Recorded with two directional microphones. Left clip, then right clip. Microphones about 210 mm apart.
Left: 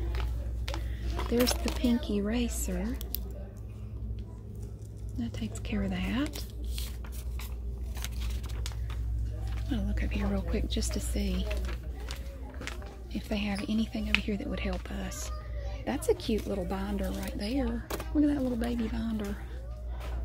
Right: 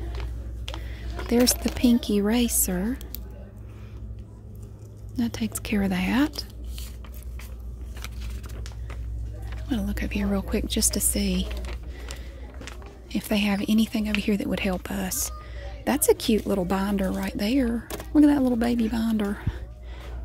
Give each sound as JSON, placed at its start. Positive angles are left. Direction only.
{"t": 1.8, "sound": "a woman's voice", "side_deg": -40}
{"t": 5.1, "sound": "a woman's voice", "side_deg": -40}
{"t": 9.7, "sound": "a woman's voice", "side_deg": -40}
{"t": 13.1, "sound": "a woman's voice", "side_deg": -45}